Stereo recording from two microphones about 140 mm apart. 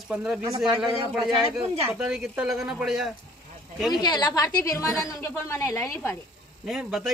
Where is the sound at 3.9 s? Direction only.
30° left (ahead or behind).